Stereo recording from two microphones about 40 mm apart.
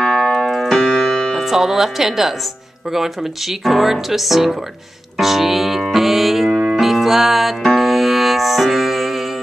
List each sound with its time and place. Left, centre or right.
0.1 s keyboard: centre
0.8 s piano: left
1.5 s speech: centre
5.2 s music: centre